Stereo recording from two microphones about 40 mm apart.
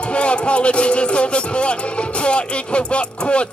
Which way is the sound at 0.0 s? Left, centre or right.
Left.